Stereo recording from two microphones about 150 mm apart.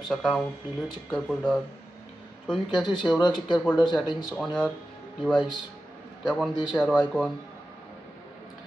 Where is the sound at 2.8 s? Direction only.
Centre (ahead or behind).